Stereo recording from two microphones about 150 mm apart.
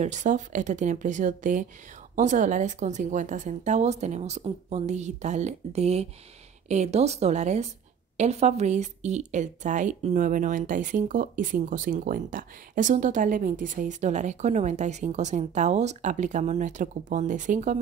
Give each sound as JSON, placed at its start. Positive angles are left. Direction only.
{"t": 0.0, "sound": "speech", "side_deg": -55}